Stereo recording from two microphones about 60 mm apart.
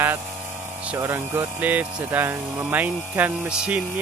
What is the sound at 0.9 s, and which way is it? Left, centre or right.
Speech, right.